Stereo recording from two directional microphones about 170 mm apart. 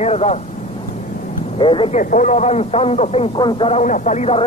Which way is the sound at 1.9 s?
45° left (ahead or behind).